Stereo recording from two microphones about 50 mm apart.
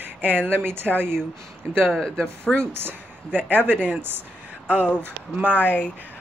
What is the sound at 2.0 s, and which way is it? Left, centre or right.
Speech, centre.